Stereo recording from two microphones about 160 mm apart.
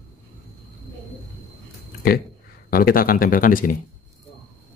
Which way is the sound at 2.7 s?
65° left (ahead or behind).